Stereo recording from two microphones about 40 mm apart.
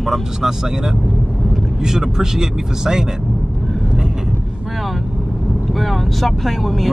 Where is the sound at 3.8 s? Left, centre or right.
Centre.